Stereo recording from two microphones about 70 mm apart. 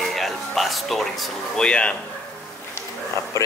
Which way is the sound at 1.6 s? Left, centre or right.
Centre.